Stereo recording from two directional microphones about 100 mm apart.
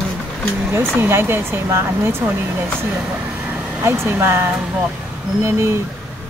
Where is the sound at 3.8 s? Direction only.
25° right (ahead or behind).